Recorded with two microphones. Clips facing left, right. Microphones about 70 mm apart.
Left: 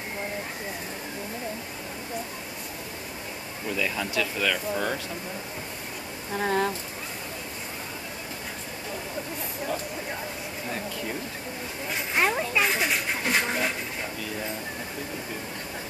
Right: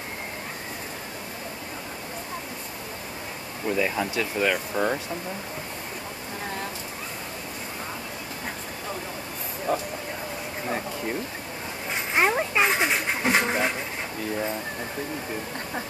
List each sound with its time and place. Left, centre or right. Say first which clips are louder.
3.6 s speech: right 4 dB; right
9.7 s speech: right 6 dB; right
12.2 s dog: right 2 dB; right